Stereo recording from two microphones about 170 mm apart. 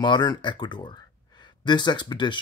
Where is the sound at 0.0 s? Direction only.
25° left (ahead or behind).